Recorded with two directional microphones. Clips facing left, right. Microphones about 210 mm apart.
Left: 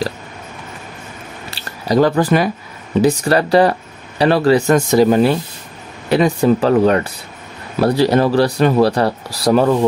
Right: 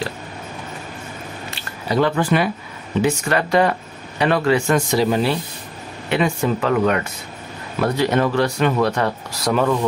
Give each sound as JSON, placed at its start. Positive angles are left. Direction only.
{"t": 1.5, "sound": "speech", "side_deg": 40}